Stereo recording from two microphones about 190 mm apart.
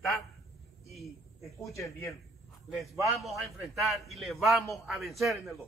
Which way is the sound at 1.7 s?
15° left (ahead or behind).